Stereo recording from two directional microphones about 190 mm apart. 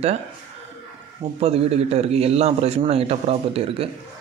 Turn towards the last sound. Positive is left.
turn(degrees=-30)  # may be behind; listen again after turning